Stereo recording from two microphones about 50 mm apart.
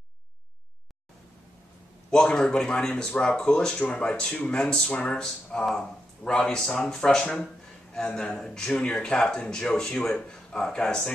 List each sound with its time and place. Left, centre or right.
2.0 s a man's voice: centre